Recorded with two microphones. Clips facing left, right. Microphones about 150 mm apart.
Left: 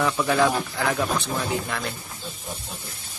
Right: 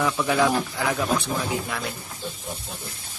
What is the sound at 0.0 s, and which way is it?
A man's voice, 5° right (ahead or behind).